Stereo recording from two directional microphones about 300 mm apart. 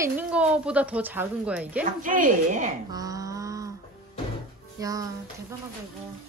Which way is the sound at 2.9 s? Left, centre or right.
Centre.